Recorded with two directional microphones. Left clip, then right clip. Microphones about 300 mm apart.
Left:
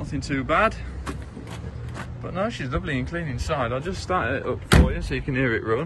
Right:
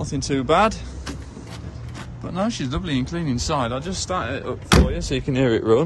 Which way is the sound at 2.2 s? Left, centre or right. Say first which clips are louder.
Right 2 dB; centre.